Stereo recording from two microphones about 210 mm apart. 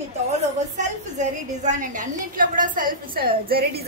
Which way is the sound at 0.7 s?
35° right (ahead or behind).